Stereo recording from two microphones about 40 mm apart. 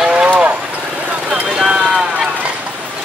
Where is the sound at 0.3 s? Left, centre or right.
Right.